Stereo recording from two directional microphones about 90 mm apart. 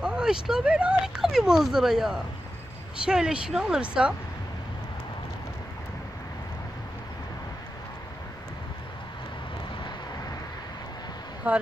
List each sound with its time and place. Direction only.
0.0 s speech: 10° right (ahead or behind)
11.4 s speech: 15° right (ahead or behind)